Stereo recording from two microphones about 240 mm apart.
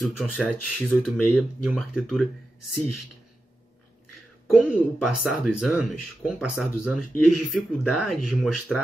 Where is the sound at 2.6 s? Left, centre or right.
Left.